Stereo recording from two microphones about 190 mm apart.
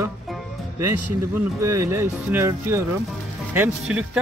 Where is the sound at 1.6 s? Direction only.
15° right (ahead or behind).